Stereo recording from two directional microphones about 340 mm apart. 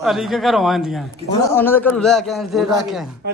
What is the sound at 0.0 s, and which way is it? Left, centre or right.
A man's voice, centre.